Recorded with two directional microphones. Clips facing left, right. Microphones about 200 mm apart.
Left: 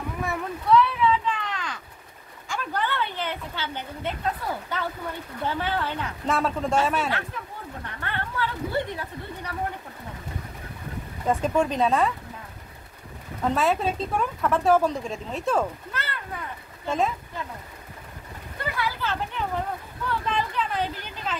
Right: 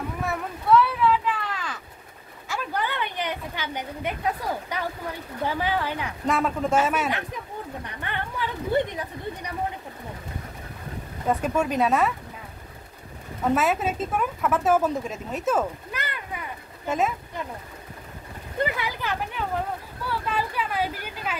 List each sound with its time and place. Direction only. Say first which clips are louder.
0.2 s a sound: left 2 dB; centre (ahead or behind)
2.4 s a woman's voice: even; 5° right (ahead or behind)
6.2 s a woman's voice: right 1 dB; centre (ahead or behind)
6.8 s speech: right 1 dB; 15° right (ahead or behind)
11.2 s speech: left 1 dB; 10° right (ahead or behind)
13.6 s a woman's voice: even; 5° right (ahead or behind)
18.8 s speech: left 1 dB; 15° right (ahead or behind)